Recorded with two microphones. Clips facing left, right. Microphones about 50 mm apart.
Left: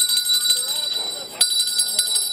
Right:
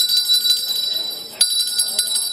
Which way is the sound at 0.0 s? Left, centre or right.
Centre.